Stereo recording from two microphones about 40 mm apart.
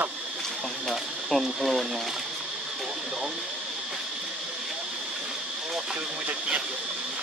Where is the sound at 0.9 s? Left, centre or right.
Centre.